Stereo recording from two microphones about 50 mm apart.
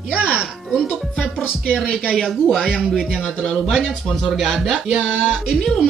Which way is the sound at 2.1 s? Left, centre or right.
Centre.